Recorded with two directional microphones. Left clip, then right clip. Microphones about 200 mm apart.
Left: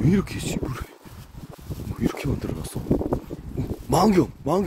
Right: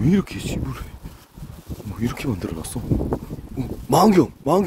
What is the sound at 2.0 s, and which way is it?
Speech, 25° right (ahead or behind).